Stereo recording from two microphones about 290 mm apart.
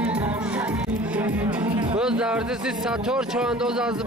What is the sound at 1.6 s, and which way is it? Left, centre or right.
Music, centre.